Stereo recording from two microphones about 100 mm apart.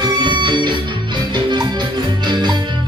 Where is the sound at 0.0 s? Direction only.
50° right (ahead or behind).